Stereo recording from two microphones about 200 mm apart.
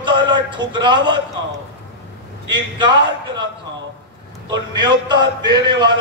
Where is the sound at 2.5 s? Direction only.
25° right (ahead or behind).